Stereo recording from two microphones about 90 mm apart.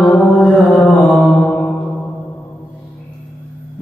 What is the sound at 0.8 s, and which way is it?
Mantra, centre (ahead or behind).